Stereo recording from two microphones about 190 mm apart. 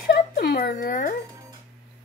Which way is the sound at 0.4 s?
55° left (ahead or behind).